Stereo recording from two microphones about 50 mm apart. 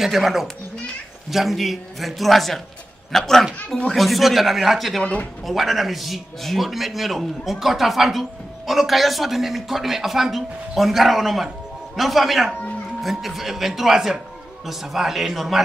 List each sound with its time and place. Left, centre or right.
0.0 s a man's voice: centre
5.0 s speech: left
5.4 s a man's voice: centre